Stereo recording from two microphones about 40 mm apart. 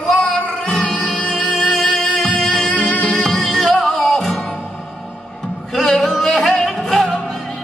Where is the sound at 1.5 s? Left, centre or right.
Centre.